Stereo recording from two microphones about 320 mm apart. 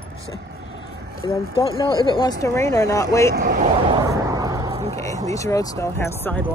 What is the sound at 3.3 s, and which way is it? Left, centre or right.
Speech, right.